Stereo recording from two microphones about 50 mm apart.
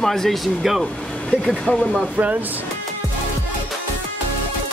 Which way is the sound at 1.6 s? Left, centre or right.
Centre.